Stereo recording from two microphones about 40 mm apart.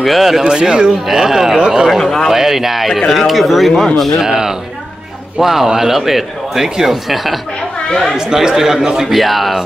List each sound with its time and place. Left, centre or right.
0.0 s speech: centre
0.4 s speech: centre
1.9 s a man's voice: centre
2.3 s speech: centre
3.8 s a man's voice: centre
4.2 s speech: centre
7.9 s a man's voice: centre
8.2 s speech: centre